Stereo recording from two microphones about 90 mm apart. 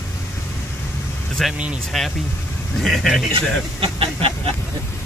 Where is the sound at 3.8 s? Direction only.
90° right.